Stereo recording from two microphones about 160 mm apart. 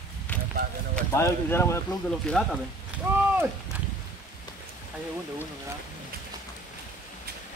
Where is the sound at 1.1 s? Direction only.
15° left (ahead or behind).